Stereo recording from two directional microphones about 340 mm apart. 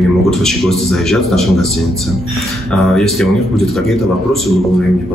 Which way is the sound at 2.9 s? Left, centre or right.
Centre.